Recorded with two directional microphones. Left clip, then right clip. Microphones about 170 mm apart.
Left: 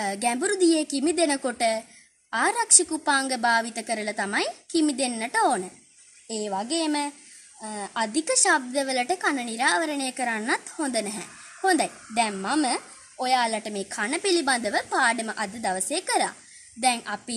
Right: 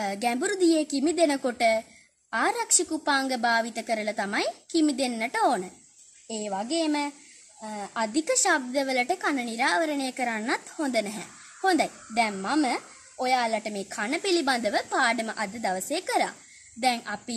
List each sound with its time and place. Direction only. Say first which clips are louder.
0.2 s a woman's voice: left 2 dB; 15° right (ahead or behind)